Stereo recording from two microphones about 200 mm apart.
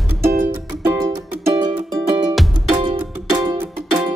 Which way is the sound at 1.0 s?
20° right (ahead or behind).